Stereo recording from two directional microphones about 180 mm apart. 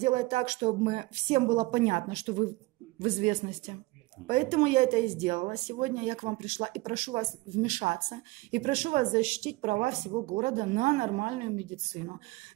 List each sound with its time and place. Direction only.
0.0 s speech: 35° right (ahead or behind)